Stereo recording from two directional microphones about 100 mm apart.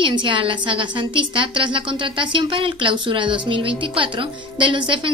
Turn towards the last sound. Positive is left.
turn(degrees=-55)  # may be behind; listen again after turning